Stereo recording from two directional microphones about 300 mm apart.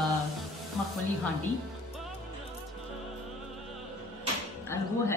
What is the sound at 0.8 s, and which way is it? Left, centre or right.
Music, centre.